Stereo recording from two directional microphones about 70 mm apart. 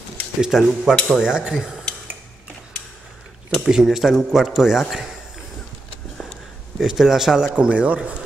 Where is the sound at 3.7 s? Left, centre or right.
Centre.